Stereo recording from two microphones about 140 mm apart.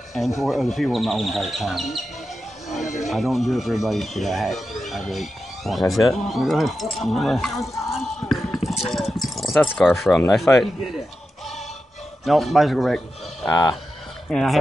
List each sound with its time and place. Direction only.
0.4 s speech: centre (ahead or behind)
2.8 s speech: 55° left (ahead or behind)
3.1 s speech: centre (ahead or behind)
7.9 s a sound: centre (ahead or behind)
10.3 s speech: centre (ahead or behind)
12.3 s speech: centre (ahead or behind)
13.5 s speech: 25° left (ahead or behind)
14.3 s speech: centre (ahead or behind)